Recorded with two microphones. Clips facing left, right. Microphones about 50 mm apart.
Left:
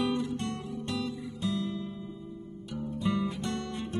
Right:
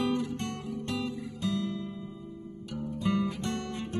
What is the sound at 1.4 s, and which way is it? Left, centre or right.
Guitar, left.